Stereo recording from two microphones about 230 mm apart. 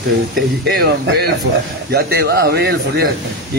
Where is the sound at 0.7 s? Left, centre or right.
Right.